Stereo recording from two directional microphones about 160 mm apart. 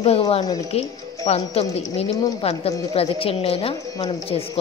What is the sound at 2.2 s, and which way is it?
Speech, 30° left (ahead or behind).